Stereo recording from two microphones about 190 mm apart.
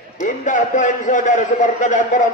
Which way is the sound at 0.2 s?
40° left (ahead or behind).